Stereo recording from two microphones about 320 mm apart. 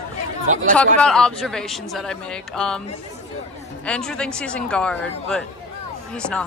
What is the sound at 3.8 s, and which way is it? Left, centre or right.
A man's voice, centre.